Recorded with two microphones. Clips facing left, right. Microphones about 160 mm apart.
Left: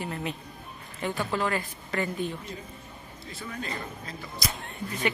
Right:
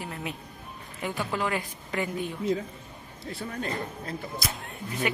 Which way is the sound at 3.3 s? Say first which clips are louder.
Right 3 dB; 55° right (ahead or behind).